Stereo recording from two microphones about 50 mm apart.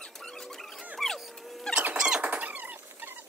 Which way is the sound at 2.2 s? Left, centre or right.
Right.